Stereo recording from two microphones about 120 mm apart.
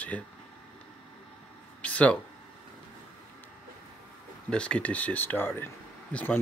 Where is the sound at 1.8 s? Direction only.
10° left (ahead or behind).